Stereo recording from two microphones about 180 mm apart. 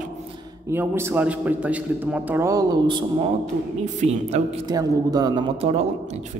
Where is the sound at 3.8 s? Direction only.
40° right (ahead or behind).